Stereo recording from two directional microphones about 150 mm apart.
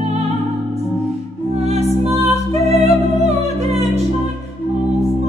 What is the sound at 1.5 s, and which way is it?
Music, 45° right (ahead or behind).